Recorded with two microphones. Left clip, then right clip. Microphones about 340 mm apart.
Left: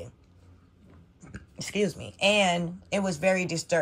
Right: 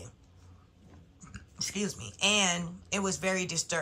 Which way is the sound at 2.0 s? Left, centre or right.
Centre.